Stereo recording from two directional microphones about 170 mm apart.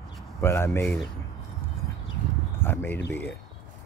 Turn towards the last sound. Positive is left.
turn(degrees=10)  # may be behind; listen again after turning